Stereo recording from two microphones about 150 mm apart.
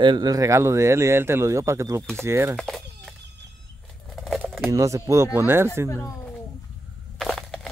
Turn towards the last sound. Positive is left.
turn(degrees=0)  # may be behind; listen again after turning